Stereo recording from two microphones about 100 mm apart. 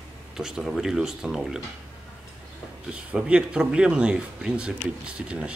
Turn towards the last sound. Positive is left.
turn(degrees=-10)  # may be behind; listen again after turning